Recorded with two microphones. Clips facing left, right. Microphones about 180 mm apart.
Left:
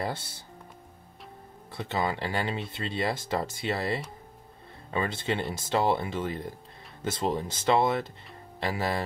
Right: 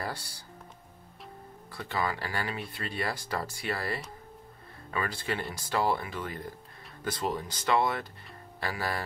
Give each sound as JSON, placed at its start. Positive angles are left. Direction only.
{"t": 0.0, "sound": "speech", "side_deg": 25}
{"t": 1.7, "sound": "speech", "side_deg": 25}